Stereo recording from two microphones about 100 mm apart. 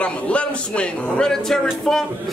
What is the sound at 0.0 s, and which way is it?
A man's voice, 10° left (ahead or behind).